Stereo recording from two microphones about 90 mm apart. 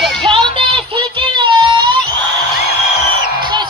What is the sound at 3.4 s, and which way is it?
Music, 55° right (ahead or behind).